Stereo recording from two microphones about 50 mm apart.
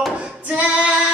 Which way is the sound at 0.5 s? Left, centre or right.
Right.